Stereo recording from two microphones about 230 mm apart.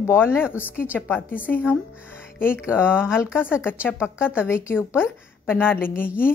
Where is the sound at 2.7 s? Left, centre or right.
Centre.